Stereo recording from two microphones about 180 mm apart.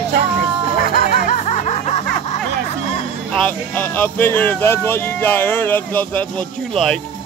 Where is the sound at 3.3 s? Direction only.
10° left (ahead or behind).